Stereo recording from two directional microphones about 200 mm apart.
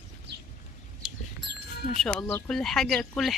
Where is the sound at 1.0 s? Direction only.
Centre (ahead or behind).